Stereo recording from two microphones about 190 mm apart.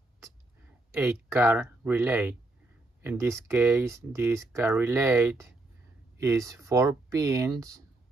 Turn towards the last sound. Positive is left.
turn(degrees=-20)  # may be behind; listen again after turning